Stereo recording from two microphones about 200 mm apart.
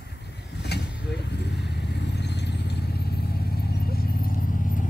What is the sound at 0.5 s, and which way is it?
Vehicle, 55° left (ahead or behind).